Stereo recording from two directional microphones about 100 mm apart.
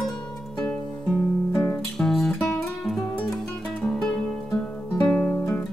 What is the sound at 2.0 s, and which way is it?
Music, 5° left (ahead or behind).